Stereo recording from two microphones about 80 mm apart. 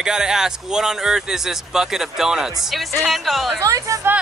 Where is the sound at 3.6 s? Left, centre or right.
Right.